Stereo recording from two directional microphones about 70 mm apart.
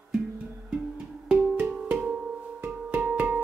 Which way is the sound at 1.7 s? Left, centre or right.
Centre.